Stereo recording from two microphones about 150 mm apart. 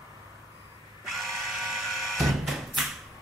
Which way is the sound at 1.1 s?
Centre (ahead or behind).